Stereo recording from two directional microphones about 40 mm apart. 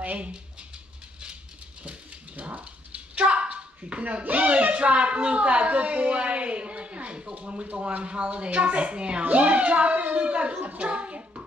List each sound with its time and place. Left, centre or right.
0.0 s speech: right
1.8 s a sound: right
4.4 s a woman's voice: right
10.8 s hands: right